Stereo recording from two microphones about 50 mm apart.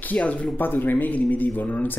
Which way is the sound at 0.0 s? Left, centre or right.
Left.